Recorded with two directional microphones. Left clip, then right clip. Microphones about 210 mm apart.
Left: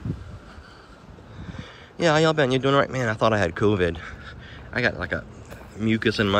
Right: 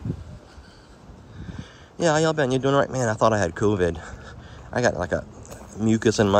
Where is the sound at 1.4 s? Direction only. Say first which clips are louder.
Left 2 dB; 10° right (ahead or behind).